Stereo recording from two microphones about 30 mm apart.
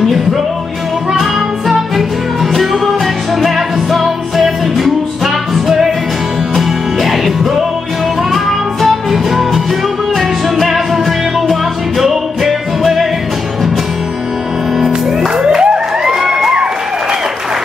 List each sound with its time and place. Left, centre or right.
0.0 s music: centre
2.5 s music: centre
12.0 s music: centre
15.4 s music: right
16.3 s crowd: right